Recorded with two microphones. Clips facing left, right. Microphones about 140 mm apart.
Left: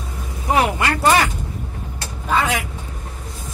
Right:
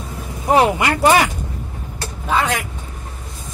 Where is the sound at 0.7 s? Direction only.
15° right (ahead or behind).